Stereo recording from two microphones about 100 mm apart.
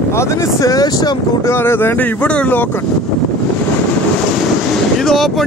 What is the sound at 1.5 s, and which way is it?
Speech, 25° left (ahead or behind).